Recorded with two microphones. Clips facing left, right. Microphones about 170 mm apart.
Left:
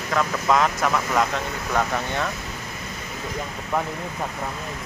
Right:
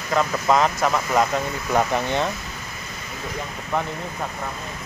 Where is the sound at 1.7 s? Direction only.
20° right (ahead or behind).